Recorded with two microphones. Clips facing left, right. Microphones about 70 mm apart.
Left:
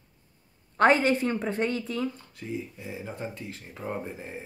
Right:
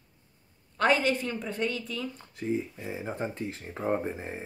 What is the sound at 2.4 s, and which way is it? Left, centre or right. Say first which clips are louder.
Speech: right 4 dB; right.